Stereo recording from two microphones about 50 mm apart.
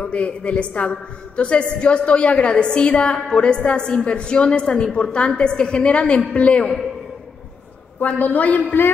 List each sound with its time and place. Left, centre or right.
0.0 s a woman's voice: left
8.0 s a woman's voice: left